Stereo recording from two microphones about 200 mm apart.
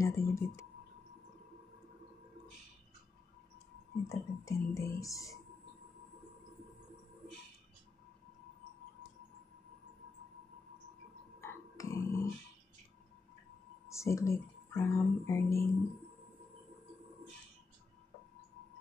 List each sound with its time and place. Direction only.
0.0 s speech: 15° left (ahead or behind)
4.1 s speech: 15° left (ahead or behind)
11.4 s a sound: 15° left (ahead or behind)
13.8 s speech: 15° left (ahead or behind)